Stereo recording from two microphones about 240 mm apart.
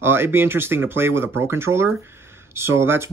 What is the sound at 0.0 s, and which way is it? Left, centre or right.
Speech, centre.